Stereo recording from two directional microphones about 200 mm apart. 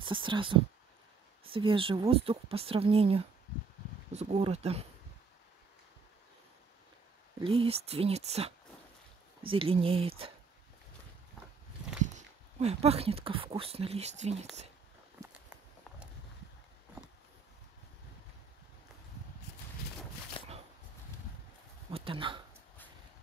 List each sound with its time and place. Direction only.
0.0 s speech: 25° right (ahead or behind)
7.3 s speech: 25° right (ahead or behind)
12.0 s speech: 35° right (ahead or behind)
20.4 s a sound: 25° left (ahead or behind)
21.9 s speech: 25° right (ahead or behind)